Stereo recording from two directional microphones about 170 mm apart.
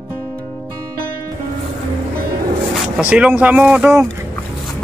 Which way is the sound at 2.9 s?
5° right (ahead or behind).